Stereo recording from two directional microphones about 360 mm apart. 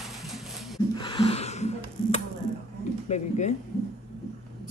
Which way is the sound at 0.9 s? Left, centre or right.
Centre.